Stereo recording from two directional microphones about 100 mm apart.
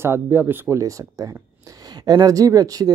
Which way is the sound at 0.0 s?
20° right (ahead or behind).